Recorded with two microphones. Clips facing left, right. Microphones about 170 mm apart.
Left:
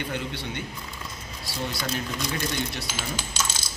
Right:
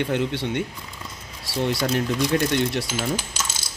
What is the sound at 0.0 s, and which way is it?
Speech, 75° right (ahead or behind).